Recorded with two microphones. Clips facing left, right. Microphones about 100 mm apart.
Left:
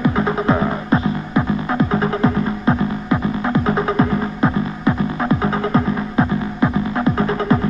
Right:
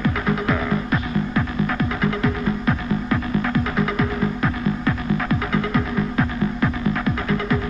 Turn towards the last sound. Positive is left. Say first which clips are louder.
# left 5 dB
turn(degrees=30)  # may be behind; listen again after turning